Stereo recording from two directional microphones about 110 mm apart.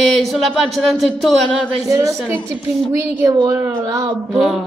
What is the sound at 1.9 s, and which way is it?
A woman's voice, 30° right (ahead or behind).